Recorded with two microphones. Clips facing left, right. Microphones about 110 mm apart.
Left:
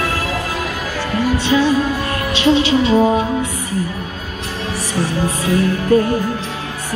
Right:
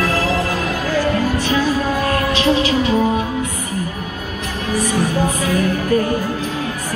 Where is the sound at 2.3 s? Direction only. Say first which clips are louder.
Left 6 dB; 25° left (ahead or behind).